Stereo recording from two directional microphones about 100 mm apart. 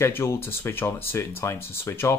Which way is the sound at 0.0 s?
25° left (ahead or behind).